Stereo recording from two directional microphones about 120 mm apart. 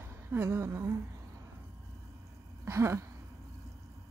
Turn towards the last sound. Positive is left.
turn(degrees=-25)  # may be behind; listen again after turning